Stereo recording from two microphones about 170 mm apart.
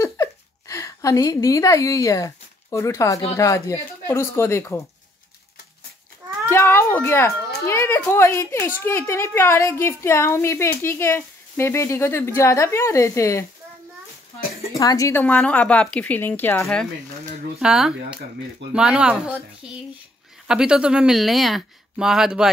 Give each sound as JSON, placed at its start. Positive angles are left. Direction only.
{"t": 0.0, "sound": "a sound", "side_deg": 20}
{"t": 3.3, "sound": "a woman's voice", "side_deg": 20}
{"t": 6.5, "sound": "a woman's voice", "side_deg": 15}
{"t": 14.7, "sound": "a woman's voice", "side_deg": 20}
{"t": 17.6, "sound": "speech", "side_deg": -5}